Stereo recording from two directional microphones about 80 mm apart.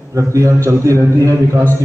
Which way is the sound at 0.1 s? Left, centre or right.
Right.